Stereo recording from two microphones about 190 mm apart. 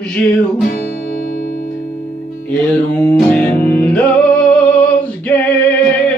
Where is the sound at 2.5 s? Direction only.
10° left (ahead or behind).